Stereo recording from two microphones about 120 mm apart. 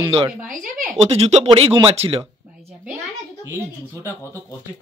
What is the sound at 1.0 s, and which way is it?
Speech, 60° right (ahead or behind).